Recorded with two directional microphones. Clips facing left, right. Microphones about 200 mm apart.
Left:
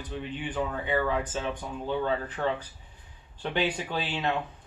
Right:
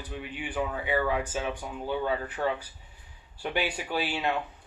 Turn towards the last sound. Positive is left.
turn(degrees=-10)  # may be behind; listen again after turning